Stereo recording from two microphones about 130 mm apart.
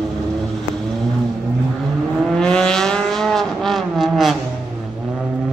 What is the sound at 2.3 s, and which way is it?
Vehicle, 5° left (ahead or behind).